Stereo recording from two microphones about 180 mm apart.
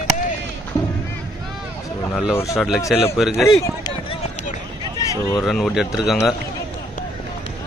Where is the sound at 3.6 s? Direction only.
20° left (ahead or behind).